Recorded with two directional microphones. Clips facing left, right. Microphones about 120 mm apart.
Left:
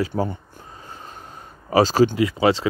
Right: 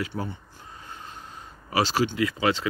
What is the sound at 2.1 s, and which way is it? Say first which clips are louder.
Speech: left 6 dB; 25° left (ahead or behind).